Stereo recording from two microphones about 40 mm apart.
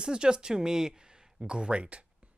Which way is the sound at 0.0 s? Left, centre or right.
Centre.